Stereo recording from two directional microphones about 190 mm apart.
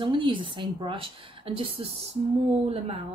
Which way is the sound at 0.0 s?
25° right (ahead or behind).